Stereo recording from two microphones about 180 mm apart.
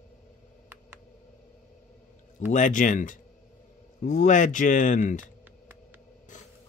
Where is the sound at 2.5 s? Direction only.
45° left (ahead or behind).